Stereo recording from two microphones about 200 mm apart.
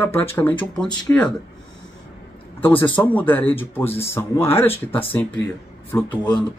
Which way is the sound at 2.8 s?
10° left (ahead or behind).